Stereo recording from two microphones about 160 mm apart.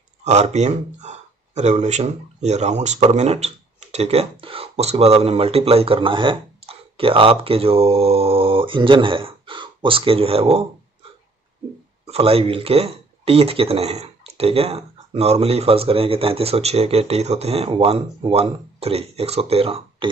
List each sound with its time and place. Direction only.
0.2 s speech: 45° right (ahead or behind)
12.1 s speech: 35° right (ahead or behind)